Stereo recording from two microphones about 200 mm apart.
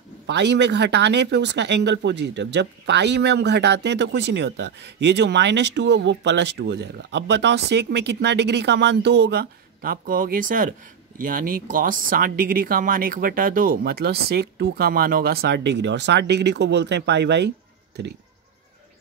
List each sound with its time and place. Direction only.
0.3 s speech: 60° right (ahead or behind)